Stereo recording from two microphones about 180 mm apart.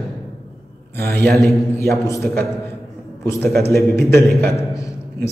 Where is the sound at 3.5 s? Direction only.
60° right (ahead or behind).